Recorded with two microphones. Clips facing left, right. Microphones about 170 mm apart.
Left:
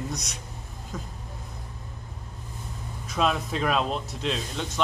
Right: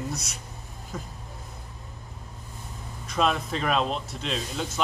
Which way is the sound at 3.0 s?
Centre (ahead or behind).